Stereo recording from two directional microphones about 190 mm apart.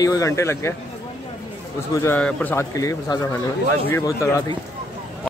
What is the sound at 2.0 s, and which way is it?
A man's voice, 10° left (ahead or behind).